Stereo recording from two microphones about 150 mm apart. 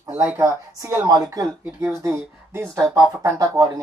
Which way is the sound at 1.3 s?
20° right (ahead or behind).